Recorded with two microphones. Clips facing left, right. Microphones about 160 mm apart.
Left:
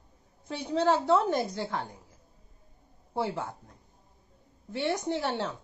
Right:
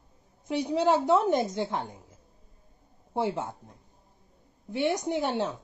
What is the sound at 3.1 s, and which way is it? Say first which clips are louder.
Speech: right 2 dB; 20° right (ahead or behind).